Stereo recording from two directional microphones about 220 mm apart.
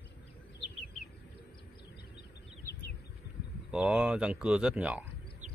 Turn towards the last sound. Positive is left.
turn(degrees=-5)  # may be behind; listen again after turning